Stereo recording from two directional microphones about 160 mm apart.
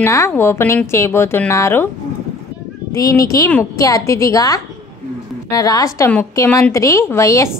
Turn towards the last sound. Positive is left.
turn(degrees=20)  # may be behind; listen again after turning